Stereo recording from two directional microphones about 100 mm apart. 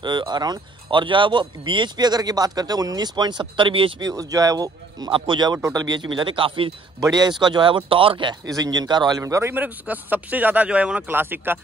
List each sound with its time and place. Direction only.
0.0 s speech: 50° right (ahead or behind)
4.0 s speech: 35° right (ahead or behind)
5.1 s speech: 55° right (ahead or behind)
5.6 s speech: 40° right (ahead or behind); by 6.7 s 60° right (ahead or behind)
7.0 s speech: 45° right (ahead or behind)
8.5 s speech: 40° right (ahead or behind)
9.2 s speech: 25° right (ahead or behind)